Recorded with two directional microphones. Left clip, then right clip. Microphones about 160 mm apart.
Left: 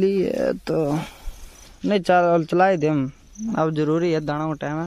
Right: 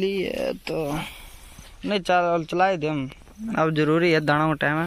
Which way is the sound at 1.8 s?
85° left.